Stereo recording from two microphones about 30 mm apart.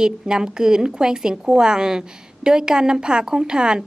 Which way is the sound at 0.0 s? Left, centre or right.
Right.